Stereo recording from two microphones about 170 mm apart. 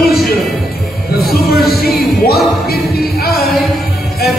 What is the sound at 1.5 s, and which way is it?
Music, 65° left (ahead or behind).